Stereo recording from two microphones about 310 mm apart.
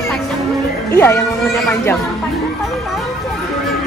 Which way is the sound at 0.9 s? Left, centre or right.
Centre.